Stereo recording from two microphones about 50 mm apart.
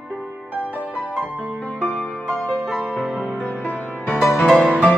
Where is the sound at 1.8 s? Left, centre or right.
Centre.